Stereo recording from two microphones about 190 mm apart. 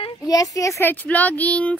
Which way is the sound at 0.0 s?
20° left (ahead or behind).